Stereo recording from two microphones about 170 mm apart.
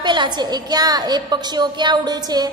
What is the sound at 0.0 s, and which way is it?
A woman's voice, 25° right (ahead or behind).